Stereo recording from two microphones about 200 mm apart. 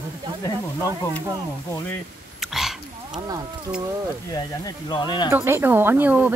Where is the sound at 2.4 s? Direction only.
Centre (ahead or behind).